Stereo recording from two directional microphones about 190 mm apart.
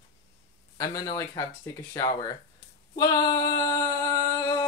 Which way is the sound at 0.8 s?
20° left (ahead or behind).